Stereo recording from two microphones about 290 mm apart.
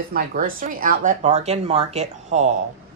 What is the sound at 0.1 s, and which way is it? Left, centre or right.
Speech, right.